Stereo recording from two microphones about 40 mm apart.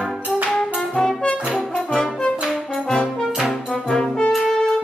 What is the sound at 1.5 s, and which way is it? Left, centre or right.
Brass instrument, centre.